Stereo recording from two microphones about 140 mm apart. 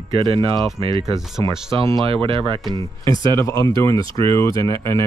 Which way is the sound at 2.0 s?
40° right (ahead or behind).